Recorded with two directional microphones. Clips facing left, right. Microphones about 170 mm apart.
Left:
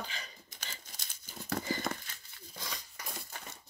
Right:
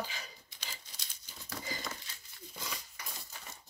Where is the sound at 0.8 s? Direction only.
50° left (ahead or behind).